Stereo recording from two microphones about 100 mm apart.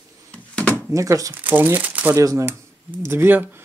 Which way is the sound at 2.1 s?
35° right (ahead or behind).